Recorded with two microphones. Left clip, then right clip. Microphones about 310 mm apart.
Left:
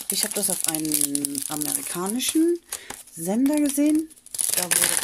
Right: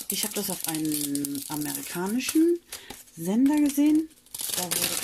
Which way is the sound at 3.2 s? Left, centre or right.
Left.